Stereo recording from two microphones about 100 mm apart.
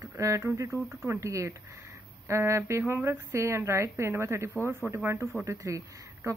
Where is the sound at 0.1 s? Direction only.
30° right (ahead or behind).